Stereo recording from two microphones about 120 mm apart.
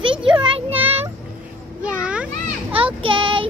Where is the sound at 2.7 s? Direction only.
50° right (ahead or behind).